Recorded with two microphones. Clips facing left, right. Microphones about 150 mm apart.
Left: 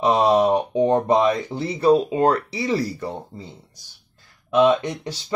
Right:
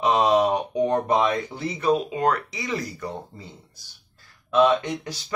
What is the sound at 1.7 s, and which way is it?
Speech, 35° left (ahead or behind).